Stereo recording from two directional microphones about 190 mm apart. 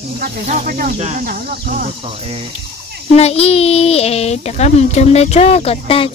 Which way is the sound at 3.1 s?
35° left (ahead or behind).